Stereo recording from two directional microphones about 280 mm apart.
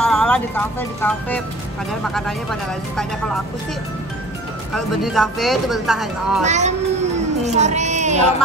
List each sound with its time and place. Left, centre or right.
0.0 s music: centre
1.0 s speech: centre
4.7 s speech: centre
6.4 s speech: right